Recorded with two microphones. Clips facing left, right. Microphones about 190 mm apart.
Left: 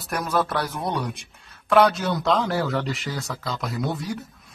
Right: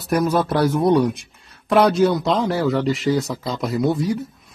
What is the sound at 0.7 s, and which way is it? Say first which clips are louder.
Speech: right 11 dB; centre (ahead or behind).